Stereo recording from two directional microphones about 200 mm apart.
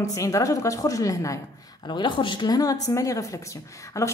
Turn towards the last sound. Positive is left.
turn(degrees=15)  # may be behind; listen again after turning